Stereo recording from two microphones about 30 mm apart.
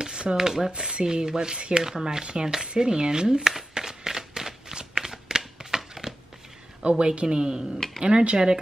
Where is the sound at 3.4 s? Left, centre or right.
Centre.